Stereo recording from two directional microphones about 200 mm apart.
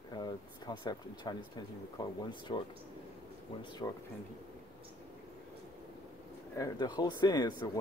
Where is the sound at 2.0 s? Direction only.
20° left (ahead or behind).